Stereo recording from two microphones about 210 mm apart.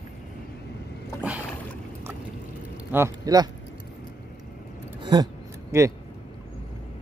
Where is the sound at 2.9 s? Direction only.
15° right (ahead or behind).